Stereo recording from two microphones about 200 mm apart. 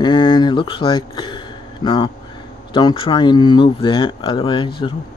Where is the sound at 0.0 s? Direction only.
25° left (ahead or behind).